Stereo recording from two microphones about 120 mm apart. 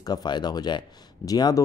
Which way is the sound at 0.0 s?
35° left (ahead or behind).